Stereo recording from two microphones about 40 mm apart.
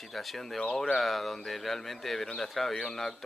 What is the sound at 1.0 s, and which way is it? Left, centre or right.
Speech, centre.